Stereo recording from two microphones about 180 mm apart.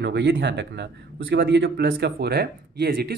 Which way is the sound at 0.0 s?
75° right (ahead or behind).